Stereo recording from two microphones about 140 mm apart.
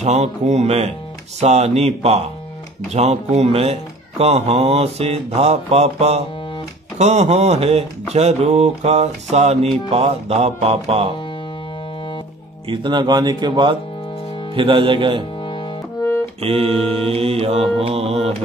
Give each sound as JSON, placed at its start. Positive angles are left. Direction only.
{"t": 0.0, "sound": "mantra", "side_deg": -50}
{"t": 12.6, "sound": "speech", "side_deg": -35}
{"t": 16.3, "sound": "mantra", "side_deg": -45}